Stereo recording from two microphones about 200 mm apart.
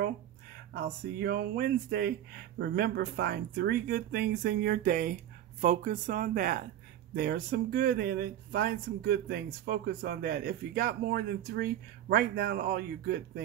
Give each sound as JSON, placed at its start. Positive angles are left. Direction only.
{"t": 0.7, "sound": "speech", "side_deg": -50}